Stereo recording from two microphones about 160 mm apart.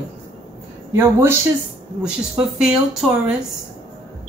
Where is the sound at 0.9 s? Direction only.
15° right (ahead or behind).